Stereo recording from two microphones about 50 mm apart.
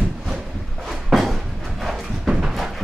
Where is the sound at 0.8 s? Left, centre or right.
Centre.